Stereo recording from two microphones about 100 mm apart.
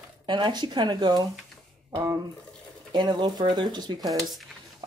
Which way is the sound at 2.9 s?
45° right (ahead or behind).